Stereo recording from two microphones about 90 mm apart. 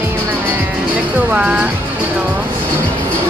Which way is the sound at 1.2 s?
20° right (ahead or behind).